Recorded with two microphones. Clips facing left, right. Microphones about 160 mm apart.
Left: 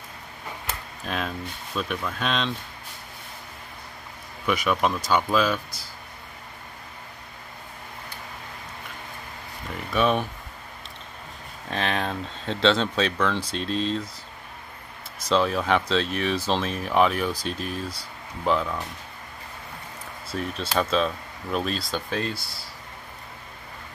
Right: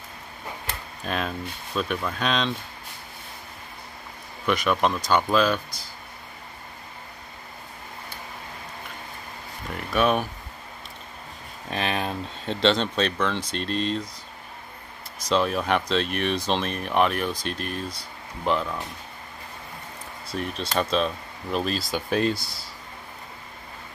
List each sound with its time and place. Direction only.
1.0 s speech: centre (ahead or behind)
4.5 s speech: 5° left (ahead or behind)
9.9 s speech: 5° right (ahead or behind)
11.7 s speech: 5° right (ahead or behind)
15.2 s speech: 5° right (ahead or behind)
20.2 s speech: 5° left (ahead or behind)
21.9 s speech: 15° right (ahead or behind)